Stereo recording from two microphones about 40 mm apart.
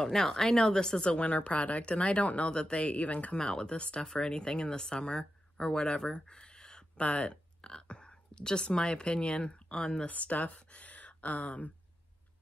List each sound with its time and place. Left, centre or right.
0.0 s speech: centre; by 2.5 s left
2.5 s speech: left
2.8 s speech: left
3.3 s speech: left
7.0 s a sound: left
8.6 s speech: left
10.0 s speech: left